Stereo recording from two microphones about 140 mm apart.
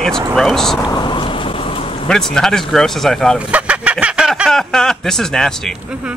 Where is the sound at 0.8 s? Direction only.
35° left (ahead or behind).